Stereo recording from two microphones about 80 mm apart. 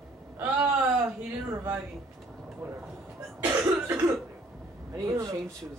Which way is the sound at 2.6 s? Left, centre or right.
Right.